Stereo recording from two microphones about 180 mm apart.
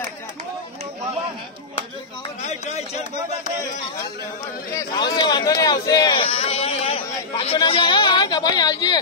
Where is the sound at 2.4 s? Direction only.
40° left (ahead or behind).